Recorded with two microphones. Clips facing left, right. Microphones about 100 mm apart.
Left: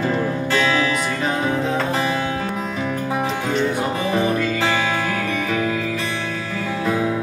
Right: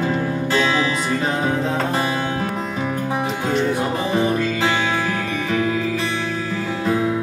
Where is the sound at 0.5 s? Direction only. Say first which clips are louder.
Even; 20° right (ahead or behind).